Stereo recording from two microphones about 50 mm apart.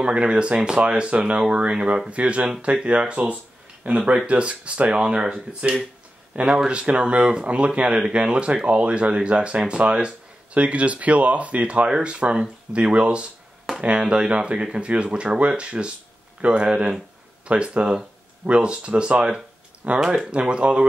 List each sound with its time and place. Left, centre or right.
0.0 s speech: right